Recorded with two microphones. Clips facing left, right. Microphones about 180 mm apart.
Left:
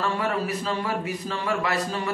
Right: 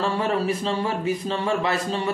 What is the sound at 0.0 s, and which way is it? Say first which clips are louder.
A man's voice: right 3 dB; 25° right (ahead or behind).